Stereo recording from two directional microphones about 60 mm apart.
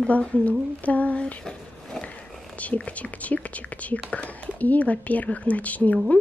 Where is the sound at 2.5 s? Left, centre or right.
Left.